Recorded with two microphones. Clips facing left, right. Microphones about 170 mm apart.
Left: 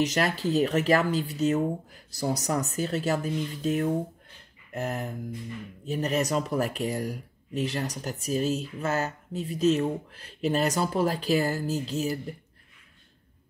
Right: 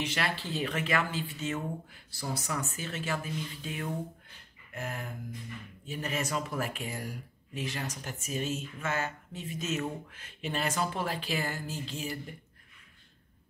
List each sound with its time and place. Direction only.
0.0 s speech: 40° left (ahead or behind)